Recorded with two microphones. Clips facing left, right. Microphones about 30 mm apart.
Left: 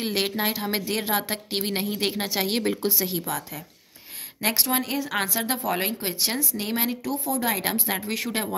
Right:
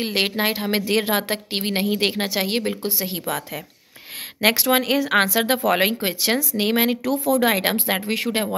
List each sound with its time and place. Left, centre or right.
0.0 s a woman's voice: right
2.4 s speech: centre
3.0 s a woman's voice: right
4.4 s speech: right